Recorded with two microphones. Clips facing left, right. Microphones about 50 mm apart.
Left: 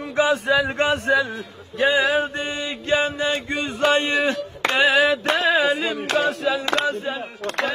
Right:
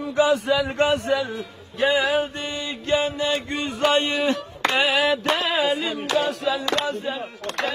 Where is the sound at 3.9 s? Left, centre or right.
Centre.